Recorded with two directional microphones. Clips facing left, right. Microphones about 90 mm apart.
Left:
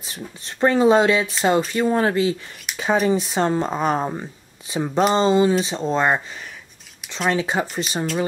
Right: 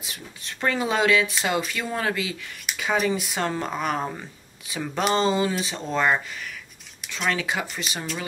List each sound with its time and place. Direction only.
0.0 s speech: 35° left (ahead or behind)
7.2 s speech: 30° left (ahead or behind)